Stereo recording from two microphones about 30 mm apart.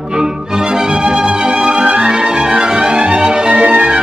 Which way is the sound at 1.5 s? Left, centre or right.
Right.